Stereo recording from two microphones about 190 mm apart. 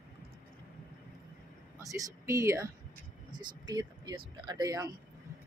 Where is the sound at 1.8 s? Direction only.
15° right (ahead or behind).